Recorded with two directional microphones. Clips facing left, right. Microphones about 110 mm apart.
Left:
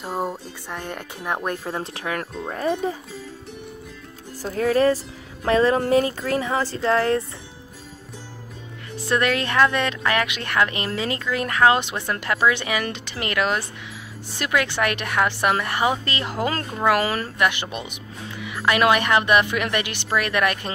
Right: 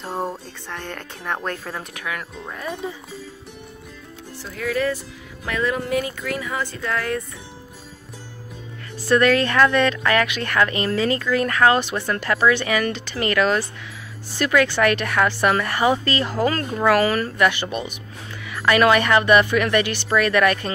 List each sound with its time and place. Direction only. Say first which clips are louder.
0.0 s speech: even; 5° left (ahead or behind); by 3.0 s 40° left (ahead or behind)
4.4 s speech: left 5 dB; 40° left (ahead or behind)
9.0 s speech: right 5 dB; 15° left (ahead or behind)